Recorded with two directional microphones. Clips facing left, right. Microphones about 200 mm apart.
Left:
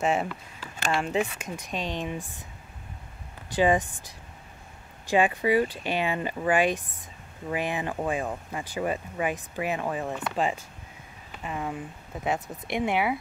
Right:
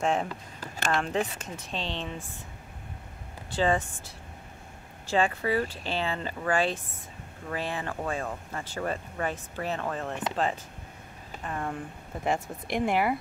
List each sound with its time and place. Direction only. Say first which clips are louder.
0.0 s speech: left 1 dB; 5° left (ahead or behind)
3.5 s speech: left 3 dB; 15° left (ahead or behind)
5.0 s speech: left 3 dB; 15° left (ahead or behind)